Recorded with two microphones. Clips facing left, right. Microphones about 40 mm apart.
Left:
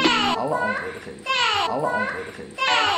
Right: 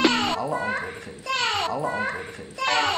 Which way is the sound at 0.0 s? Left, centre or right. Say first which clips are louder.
Left 2 dB; left.